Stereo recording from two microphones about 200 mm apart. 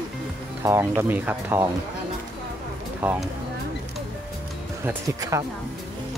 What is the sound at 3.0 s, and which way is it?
Speech, 5° right (ahead or behind).